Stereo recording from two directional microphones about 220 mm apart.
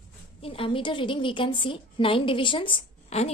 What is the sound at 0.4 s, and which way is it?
A woman's voice, 25° left (ahead or behind).